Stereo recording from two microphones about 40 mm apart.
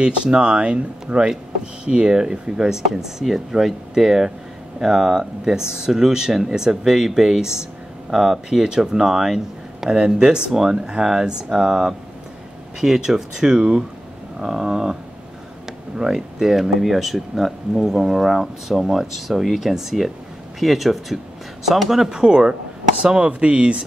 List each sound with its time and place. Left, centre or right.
0.4 s speech: right; by 15.0 s centre
16.0 s speech: centre
22.1 s speech: right